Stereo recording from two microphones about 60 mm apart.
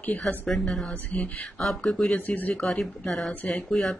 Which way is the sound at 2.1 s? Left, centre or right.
Left.